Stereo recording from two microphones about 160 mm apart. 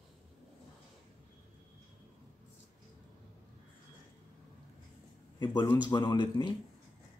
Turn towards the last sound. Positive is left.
turn(degrees=30)  # may be behind; listen again after turning